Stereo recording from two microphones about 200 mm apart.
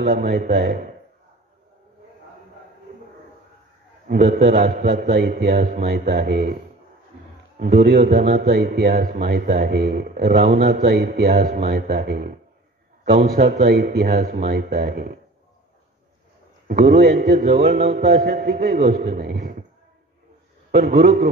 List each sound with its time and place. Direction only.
0.0 s speech: 45° right (ahead or behind)
4.1 s a man's voice: 45° right (ahead or behind)
16.6 s speech: 50° right (ahead or behind)
20.7 s speech: 50° right (ahead or behind)